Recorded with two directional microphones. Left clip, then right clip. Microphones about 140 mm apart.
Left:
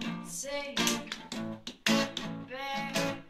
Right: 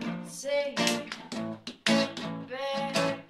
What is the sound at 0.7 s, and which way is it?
Music, 15° right (ahead or behind).